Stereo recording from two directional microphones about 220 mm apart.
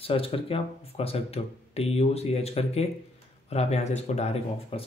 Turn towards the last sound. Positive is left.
turn(degrees=25)  # may be behind; listen again after turning